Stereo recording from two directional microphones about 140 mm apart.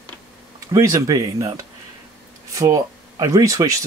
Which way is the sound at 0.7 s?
25° right (ahead or behind).